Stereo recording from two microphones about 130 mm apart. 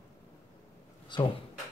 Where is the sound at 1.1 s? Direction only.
35° left (ahead or behind).